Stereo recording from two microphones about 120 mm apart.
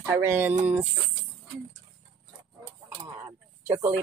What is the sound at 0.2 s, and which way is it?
Speech, 20° right (ahead or behind).